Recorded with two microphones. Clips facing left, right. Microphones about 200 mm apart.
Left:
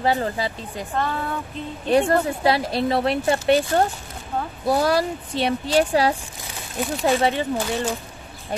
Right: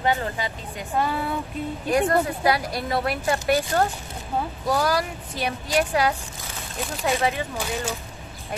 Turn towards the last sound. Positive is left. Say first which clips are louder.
# left 5 dB
turn(degrees=30)  # may be behind; listen again after turning